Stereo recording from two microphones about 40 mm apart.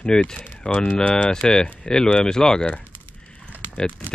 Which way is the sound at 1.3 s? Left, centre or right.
Centre.